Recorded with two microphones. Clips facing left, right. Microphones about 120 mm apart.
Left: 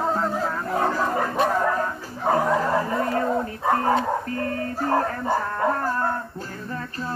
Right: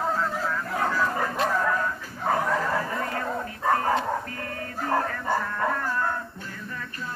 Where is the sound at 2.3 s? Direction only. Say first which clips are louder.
Left 4 dB; 20° left (ahead or behind).